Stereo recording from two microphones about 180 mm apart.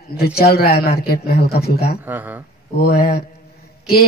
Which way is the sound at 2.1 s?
10° right (ahead or behind).